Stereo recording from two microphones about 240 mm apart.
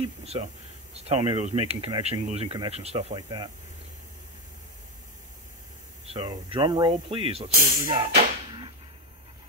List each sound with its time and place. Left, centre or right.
0.2 s speech: right
6.0 s speech: right